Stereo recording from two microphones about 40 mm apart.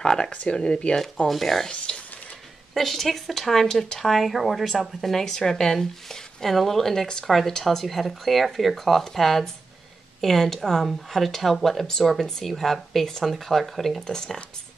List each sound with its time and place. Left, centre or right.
0.0 s speech: centre
0.3 s speech: left
1.2 s speech: centre
1.9 s speech: left
2.7 s speech: centre
5.2 s speech: centre
13.9 s speech: centre